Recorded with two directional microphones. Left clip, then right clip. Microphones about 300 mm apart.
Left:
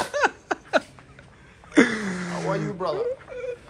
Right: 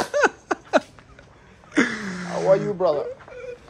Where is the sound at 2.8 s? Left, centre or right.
Right.